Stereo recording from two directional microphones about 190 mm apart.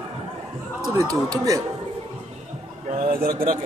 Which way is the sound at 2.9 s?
50° right (ahead or behind).